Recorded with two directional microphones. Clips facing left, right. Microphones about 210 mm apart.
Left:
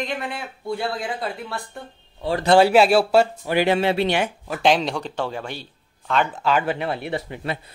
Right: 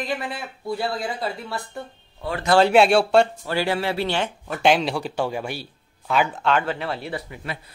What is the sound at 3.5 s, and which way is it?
Speech, 20° left (ahead or behind).